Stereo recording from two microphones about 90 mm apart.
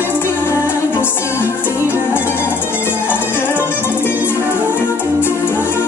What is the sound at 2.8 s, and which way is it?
Music, 25° left (ahead or behind).